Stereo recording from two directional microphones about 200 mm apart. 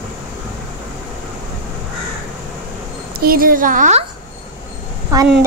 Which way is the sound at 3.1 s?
45° right (ahead or behind).